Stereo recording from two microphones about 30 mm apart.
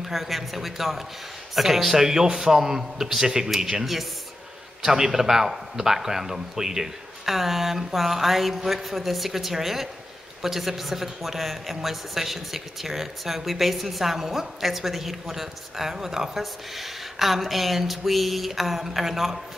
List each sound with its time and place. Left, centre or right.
0.0 s speech: centre
3.8 s speech: centre
4.8 s speech: centre